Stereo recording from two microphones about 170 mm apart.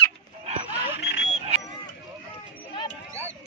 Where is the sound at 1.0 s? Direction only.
90° left.